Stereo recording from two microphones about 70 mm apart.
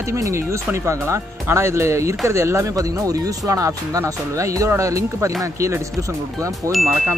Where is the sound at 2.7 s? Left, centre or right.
Right.